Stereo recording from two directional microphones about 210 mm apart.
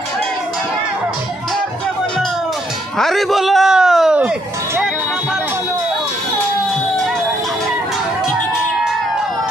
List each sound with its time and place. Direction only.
3.0 s a man's voice: centre (ahead or behind)